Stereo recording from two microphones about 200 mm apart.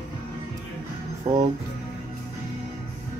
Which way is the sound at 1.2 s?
30° right (ahead or behind).